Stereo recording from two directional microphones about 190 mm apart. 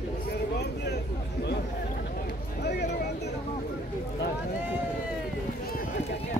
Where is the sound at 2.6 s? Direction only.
60° left (ahead or behind).